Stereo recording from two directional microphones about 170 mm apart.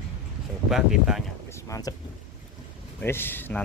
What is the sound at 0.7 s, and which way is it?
Speech, 5° right (ahead or behind).